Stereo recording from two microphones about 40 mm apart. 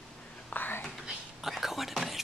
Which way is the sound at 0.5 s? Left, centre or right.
Left.